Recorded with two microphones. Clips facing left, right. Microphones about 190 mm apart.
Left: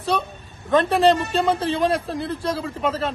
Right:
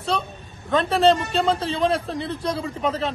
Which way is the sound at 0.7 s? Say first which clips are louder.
Left 1 dB; centre (ahead or behind).